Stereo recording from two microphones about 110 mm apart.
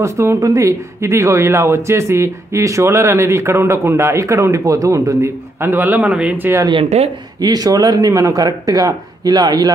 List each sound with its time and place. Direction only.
0.0 s speech: 25° right (ahead or behind)
6.7 s speech: 65° right (ahead or behind)
7.3 s speech: 35° right (ahead or behind)